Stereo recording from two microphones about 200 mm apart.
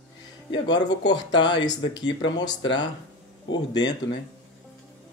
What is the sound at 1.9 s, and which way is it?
Speech, 65° left (ahead or behind).